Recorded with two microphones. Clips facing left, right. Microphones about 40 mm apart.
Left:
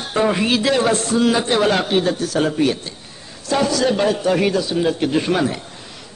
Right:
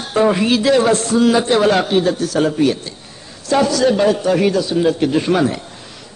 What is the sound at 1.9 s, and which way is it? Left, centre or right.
Speech, centre.